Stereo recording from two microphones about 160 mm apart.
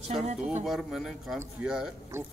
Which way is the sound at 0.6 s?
Centre (ahead or behind).